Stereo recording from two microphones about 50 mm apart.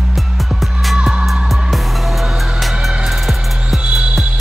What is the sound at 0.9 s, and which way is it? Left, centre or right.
Music, centre.